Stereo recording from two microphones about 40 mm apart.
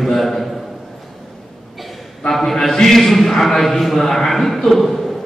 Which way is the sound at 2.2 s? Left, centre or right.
Centre.